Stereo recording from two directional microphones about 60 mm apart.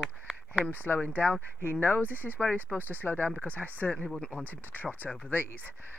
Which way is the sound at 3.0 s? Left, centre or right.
Left.